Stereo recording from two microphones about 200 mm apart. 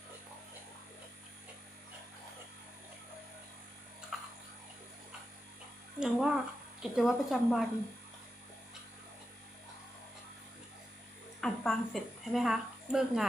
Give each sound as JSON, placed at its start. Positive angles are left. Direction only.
{"t": 4.1, "sound": "tick-tock", "side_deg": -5}
{"t": 5.9, "sound": "speech", "side_deg": -5}
{"t": 11.4, "sound": "a woman's voice", "side_deg": 0}